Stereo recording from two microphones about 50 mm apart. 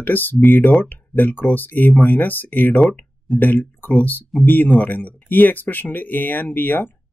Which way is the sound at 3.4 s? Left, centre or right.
Left.